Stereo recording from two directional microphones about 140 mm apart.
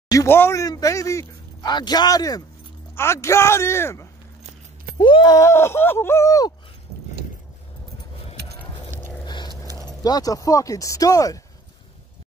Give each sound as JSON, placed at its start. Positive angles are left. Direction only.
{"t": 0.1, "sound": "speech", "side_deg": 20}
{"t": 4.9, "sound": "speech", "side_deg": 35}
{"t": 9.2, "sound": "keys jangling", "side_deg": 30}
{"t": 9.8, "sound": "speech", "side_deg": 30}